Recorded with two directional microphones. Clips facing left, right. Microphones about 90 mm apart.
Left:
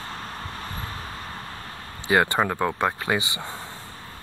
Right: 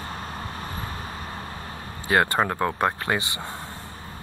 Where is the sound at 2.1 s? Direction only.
Centre (ahead or behind).